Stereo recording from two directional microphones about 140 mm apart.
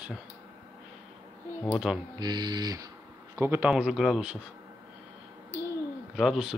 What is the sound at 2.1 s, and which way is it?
Speech, 30° right (ahead or behind).